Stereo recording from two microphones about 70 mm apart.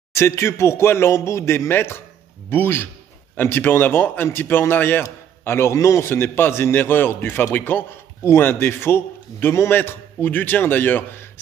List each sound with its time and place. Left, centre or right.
0.1 s a man's voice: left